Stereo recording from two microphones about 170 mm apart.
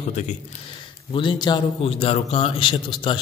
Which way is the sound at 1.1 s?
30° left (ahead or behind).